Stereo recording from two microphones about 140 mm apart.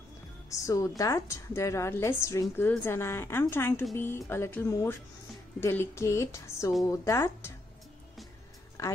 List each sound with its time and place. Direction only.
0.5 s a woman's voice: 20° left (ahead or behind)
8.8 s a woman's voice: 20° left (ahead or behind)